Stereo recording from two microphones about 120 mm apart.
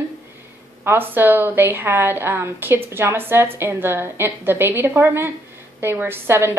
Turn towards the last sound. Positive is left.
turn(degrees=-20)  # may be behind; listen again after turning